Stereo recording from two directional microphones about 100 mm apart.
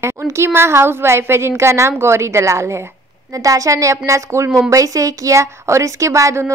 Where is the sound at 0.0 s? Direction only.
25° right (ahead or behind).